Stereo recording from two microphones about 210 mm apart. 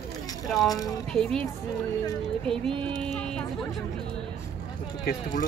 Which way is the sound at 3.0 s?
5° left (ahead or behind).